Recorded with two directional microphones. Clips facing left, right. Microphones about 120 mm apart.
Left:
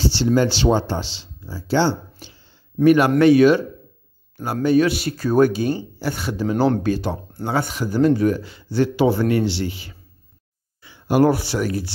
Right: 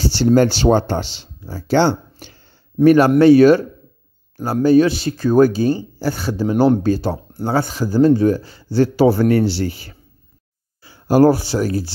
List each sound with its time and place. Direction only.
0.1 s speech: 50° right (ahead or behind)
2.8 s speech: 35° right (ahead or behind)
4.6 s speech: 30° right (ahead or behind)